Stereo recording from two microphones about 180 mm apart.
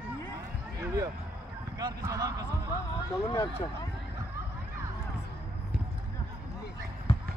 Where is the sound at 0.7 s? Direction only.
20° right (ahead or behind).